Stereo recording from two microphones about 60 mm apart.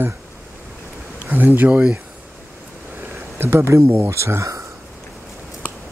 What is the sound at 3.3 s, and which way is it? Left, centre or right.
Speech, right.